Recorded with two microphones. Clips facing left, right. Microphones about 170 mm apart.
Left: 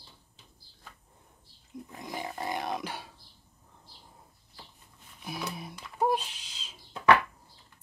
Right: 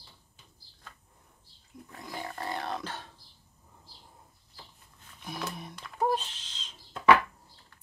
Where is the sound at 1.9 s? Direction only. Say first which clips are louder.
Left 1 dB; 15° left (ahead or behind).